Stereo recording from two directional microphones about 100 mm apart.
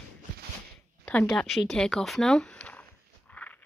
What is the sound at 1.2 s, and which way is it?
Speech, centre (ahead or behind).